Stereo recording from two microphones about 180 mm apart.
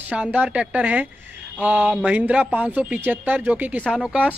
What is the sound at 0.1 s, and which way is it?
Speech, 5° right (ahead or behind).